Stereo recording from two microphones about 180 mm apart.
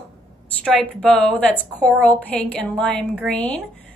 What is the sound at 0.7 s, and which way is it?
A woman's voice, 5° left (ahead or behind).